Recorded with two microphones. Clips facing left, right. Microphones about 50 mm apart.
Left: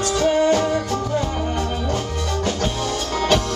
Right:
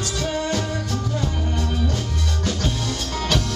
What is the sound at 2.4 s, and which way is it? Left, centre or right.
Music, left.